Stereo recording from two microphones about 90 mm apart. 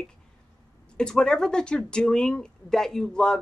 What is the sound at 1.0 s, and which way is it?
Speech, 10° left (ahead or behind).